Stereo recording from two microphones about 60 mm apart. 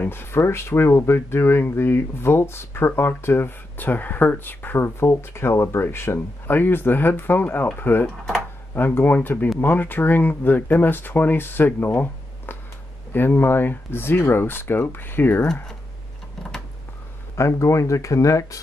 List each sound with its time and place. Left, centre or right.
0.0 s speech: left
17.4 s speech: left